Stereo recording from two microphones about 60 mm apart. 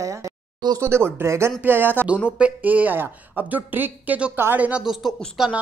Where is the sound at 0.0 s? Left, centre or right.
Right.